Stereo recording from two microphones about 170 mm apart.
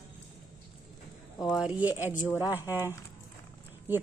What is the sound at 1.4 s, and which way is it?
Speech, 5° right (ahead or behind).